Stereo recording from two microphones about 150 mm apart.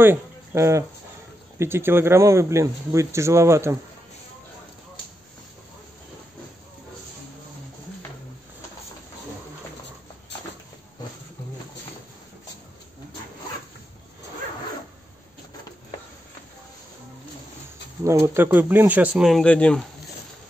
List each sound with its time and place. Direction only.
0.0 s speech: 15° right (ahead or behind)
18.0 s speech: 15° right (ahead or behind); by 19.8 s 10° left (ahead or behind)